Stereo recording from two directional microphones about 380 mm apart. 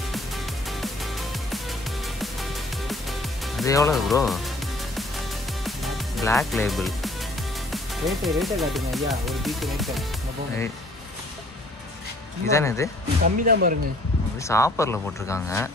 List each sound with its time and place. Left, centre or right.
0.7 s music: centre
2.9 s music: centre
5.7 s speech: centre
12.4 s speech: centre
13.2 s speech: right
14.4 s speech: centre